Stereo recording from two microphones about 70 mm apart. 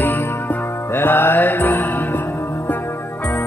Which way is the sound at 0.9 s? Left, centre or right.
Left.